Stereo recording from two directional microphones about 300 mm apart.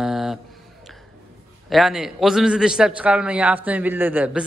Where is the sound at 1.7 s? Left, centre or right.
Centre.